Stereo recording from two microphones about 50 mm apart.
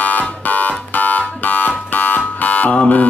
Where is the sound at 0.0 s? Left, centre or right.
Left.